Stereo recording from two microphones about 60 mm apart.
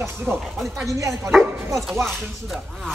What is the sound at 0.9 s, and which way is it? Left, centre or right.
Speech, right.